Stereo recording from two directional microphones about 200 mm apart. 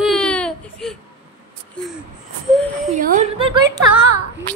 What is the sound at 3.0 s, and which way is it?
Speech, 45° right (ahead or behind).